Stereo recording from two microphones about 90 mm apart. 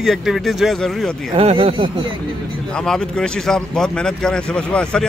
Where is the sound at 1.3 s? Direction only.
90° right; by 2.1 s 70° right (ahead or behind).